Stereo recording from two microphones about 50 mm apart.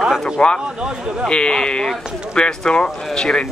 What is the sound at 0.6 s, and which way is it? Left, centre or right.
Speech, centre.